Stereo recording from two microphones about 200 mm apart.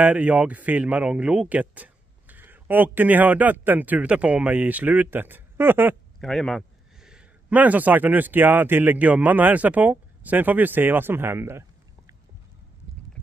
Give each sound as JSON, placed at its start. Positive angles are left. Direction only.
{"t": 0.0, "sound": "speech", "side_deg": -5}
{"t": 6.2, "sound": "speech", "side_deg": 0}